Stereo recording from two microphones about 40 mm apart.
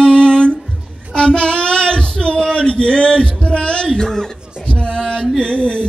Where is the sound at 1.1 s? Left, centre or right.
Left.